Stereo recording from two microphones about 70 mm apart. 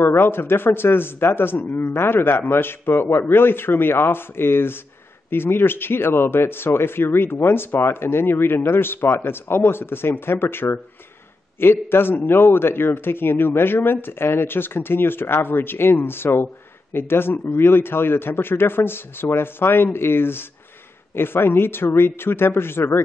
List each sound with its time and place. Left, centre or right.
0.0 s speech: left